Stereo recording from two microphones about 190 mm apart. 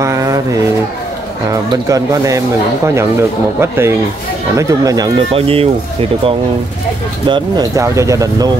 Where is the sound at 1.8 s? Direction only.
15° right (ahead or behind).